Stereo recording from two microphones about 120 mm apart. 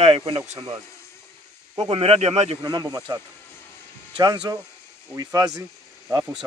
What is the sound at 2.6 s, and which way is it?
Speech, 35° right (ahead or behind).